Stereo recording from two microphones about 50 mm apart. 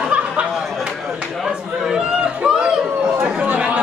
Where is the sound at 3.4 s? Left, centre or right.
Right.